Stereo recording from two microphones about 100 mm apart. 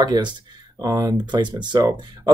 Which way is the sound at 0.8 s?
35° right (ahead or behind).